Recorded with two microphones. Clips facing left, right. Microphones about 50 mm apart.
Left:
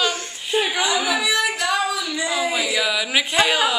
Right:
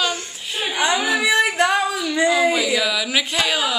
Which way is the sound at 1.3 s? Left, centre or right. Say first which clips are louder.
Right 4 dB; right.